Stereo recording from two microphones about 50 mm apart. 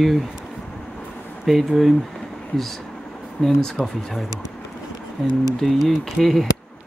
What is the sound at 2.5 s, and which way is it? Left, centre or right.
Speech, centre.